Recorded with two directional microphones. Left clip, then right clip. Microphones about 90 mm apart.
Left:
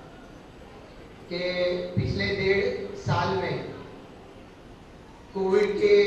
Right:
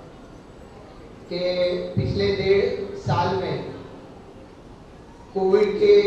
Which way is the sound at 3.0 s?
25° left (ahead or behind).